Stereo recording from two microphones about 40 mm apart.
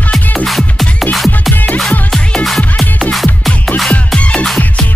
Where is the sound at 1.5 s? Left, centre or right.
Left.